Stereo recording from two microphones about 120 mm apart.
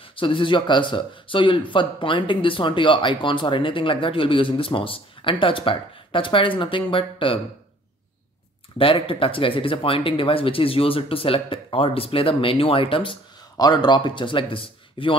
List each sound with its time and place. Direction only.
0.0 s speech: 45° left (ahead or behind)
8.7 s speech: 50° left (ahead or behind)
13.6 s speech: 35° left (ahead or behind)